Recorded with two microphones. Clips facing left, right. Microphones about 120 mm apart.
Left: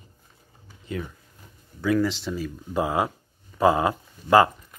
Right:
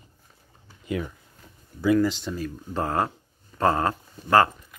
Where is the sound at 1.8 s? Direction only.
Centre (ahead or behind).